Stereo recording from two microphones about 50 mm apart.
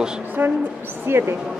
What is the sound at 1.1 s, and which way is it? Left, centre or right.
Speech, right.